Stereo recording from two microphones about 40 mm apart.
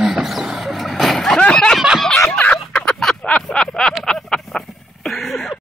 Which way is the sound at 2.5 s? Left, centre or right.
Left.